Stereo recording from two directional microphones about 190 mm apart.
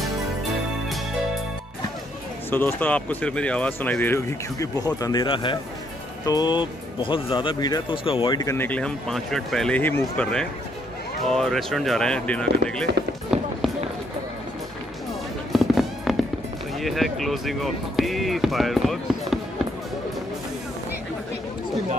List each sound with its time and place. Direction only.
2.5 s speech: 10° left (ahead or behind)
15.5 s fireworks: centre (ahead or behind)
16.8 s speech: centre (ahead or behind)